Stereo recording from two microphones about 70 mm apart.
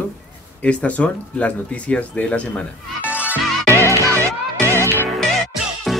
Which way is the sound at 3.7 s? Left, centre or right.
Left.